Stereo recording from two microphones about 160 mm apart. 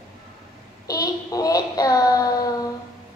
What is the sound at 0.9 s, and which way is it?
Child singing, 20° left (ahead or behind).